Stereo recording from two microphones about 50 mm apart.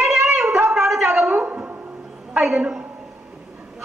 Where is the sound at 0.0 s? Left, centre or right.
Centre.